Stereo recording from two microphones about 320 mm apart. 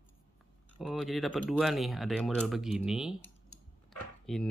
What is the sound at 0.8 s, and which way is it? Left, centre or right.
Speech, centre.